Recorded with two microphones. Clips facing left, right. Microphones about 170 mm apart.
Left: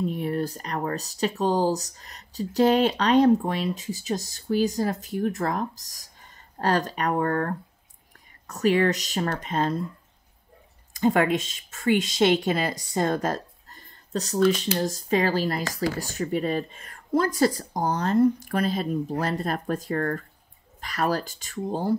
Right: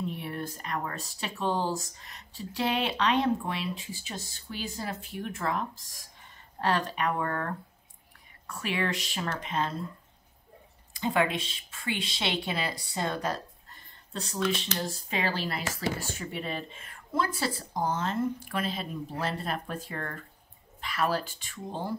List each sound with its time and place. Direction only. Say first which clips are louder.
0.0 s speech: left 8 dB; 40° left (ahead or behind)
10.9 s a woman's voice: left 6 dB; 45° left (ahead or behind)